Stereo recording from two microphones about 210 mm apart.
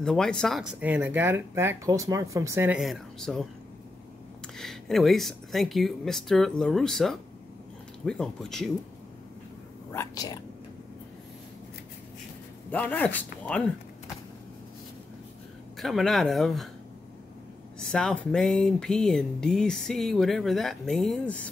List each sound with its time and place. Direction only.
0.0 s speech: centre (ahead or behind)
4.6 s speech: centre (ahead or behind)
9.9 s speech: 20° left (ahead or behind)
12.7 s speech: 10° left (ahead or behind)
15.8 s speech: centre (ahead or behind)
17.9 s speech: 5° left (ahead or behind)